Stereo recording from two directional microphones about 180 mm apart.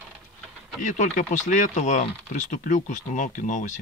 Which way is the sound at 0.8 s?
45° left (ahead or behind).